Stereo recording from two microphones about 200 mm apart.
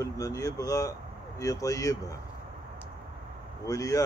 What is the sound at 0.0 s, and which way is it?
Speech, 15° left (ahead or behind).